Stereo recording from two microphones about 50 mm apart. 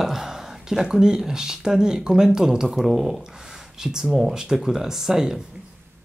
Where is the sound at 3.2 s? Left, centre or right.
Centre.